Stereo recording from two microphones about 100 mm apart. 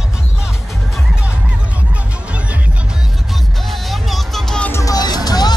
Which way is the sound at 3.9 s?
Centre (ahead or behind).